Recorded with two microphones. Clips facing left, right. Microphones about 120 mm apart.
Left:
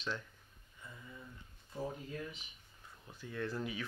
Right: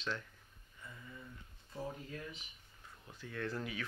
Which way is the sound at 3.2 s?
15° left (ahead or behind).